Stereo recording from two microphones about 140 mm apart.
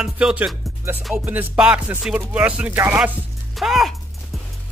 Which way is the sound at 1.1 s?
10° right (ahead or behind).